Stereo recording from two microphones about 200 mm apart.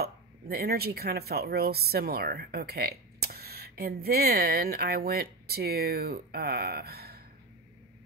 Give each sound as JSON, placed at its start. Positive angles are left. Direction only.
{"t": 0.0, "sound": "speech", "side_deg": -50}